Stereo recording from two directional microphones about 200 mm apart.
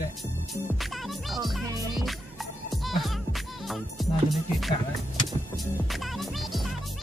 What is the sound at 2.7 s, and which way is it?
Music, centre (ahead or behind).